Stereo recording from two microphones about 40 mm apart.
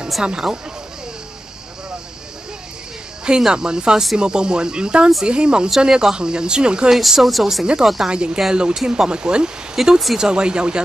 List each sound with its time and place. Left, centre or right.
0.2 s speech: centre
3.3 s speech: centre
6.9 s speech: centre
7.6 s speech: centre
9.8 s speech: centre
10.1 s speech: centre